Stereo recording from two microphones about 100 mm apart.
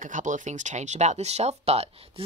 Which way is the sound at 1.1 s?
90° right.